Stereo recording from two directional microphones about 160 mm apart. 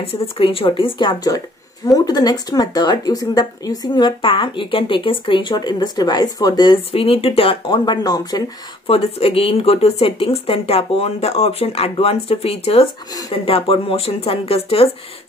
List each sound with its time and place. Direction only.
0.0 s speech: 35° left (ahead or behind)
8.8 s speech: 40° left (ahead or behind)